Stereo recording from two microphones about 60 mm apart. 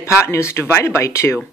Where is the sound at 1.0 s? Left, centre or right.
Left.